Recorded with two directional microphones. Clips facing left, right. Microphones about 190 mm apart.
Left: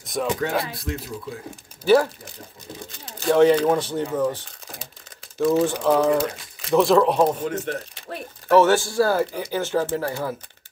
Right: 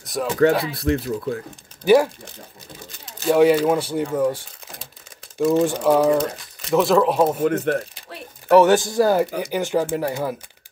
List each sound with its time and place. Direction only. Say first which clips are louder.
0.0 s a sound: right 1 dB; centre (ahead or behind)
0.4 s speech: right 8 dB; 70° right (ahead or behind)
3.2 s speech: right 1 dB; 5° right (ahead or behind)
6.1 s speech: right 1 dB; centre (ahead or behind)
7.4 s speech: right 7 dB; 60° right (ahead or behind)
8.5 s speech: right 3 dB; 15° right (ahead or behind)